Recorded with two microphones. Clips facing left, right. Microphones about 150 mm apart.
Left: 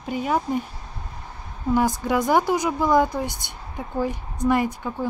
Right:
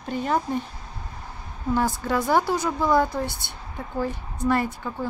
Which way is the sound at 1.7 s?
15° left (ahead or behind).